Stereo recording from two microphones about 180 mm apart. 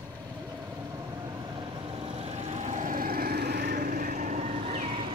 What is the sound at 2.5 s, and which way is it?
Vehicle, 40° right (ahead or behind).